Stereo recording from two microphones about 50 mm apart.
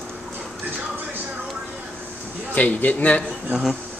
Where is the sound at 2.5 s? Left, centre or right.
Left.